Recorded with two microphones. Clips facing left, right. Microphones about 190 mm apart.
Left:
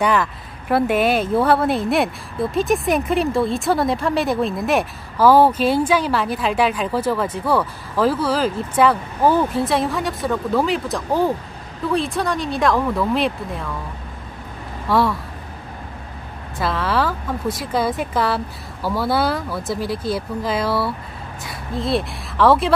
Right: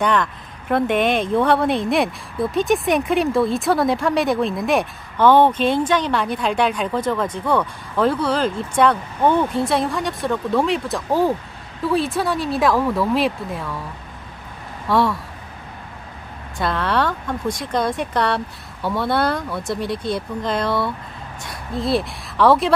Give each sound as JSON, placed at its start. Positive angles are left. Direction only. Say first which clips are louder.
{"t": 0.0, "sound": "speech", "louder": "left 1 dB", "side_deg": 5}
{"t": 14.9, "sound": "speech", "louder": "even", "side_deg": 0}
{"t": 16.5, "sound": "speech", "louder": "even", "side_deg": 0}